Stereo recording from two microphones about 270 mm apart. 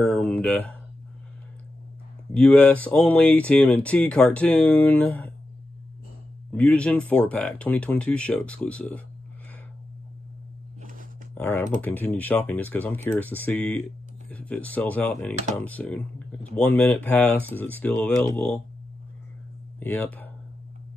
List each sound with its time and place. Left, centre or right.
0.0 s a sound: centre
2.3 s speech: centre
6.5 s speech: centre
10.8 s a sound: right
11.3 s speech: centre
19.8 s speech: centre